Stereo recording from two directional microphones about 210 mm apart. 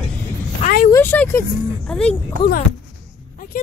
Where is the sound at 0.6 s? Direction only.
30° left (ahead or behind).